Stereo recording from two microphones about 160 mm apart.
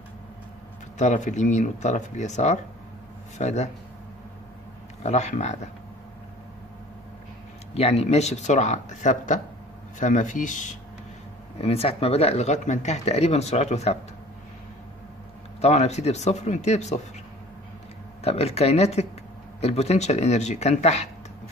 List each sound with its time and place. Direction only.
0.9 s speech: 50° left (ahead or behind)
5.0 s speech: 45° left (ahead or behind)
7.7 s speech: 40° left (ahead or behind)
11.5 s speech: 40° left (ahead or behind)
15.6 s speech: 45° left (ahead or behind)
18.2 s speech: 40° left (ahead or behind)